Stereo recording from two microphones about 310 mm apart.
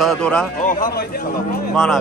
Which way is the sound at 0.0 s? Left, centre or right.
Centre.